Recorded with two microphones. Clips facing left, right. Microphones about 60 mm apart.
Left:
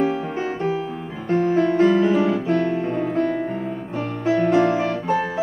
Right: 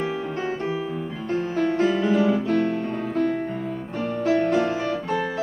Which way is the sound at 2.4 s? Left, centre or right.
Centre.